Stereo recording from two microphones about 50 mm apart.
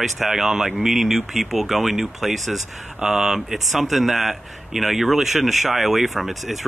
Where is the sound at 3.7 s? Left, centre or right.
Centre.